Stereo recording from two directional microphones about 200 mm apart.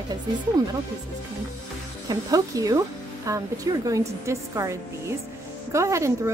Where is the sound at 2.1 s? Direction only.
20° right (ahead or behind).